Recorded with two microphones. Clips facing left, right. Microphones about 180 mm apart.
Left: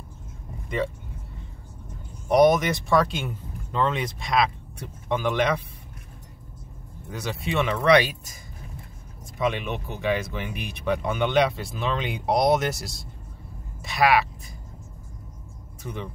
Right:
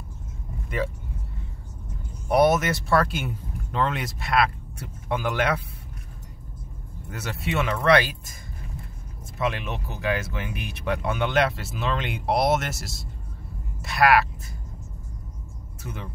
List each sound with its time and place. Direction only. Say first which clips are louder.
2.3 s speech: left 2 dB; 5° right (ahead or behind)
7.1 s speech: left 1 dB; centre (ahead or behind)
9.4 s speech: left 2 dB; centre (ahead or behind)
13.7 s a sound: right 1 dB; centre (ahead or behind)
15.8 s speech: left 3 dB; centre (ahead or behind)